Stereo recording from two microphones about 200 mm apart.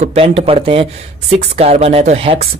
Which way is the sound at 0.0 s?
30° right (ahead or behind).